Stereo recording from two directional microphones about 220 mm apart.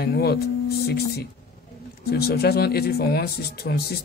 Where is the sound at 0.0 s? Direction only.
45° left (ahead or behind).